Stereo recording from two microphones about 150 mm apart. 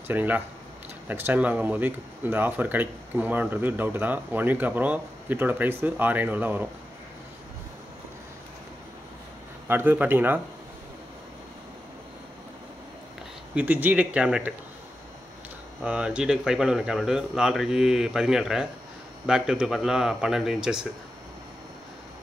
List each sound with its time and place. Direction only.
0.1 s speech: 10° right (ahead or behind)
9.7 s speech: 15° right (ahead or behind)
13.6 s speech: 10° right (ahead or behind)
15.8 s speech: 10° right (ahead or behind)